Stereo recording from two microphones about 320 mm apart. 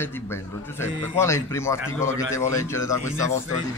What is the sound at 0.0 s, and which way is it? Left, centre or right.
Speech, centre.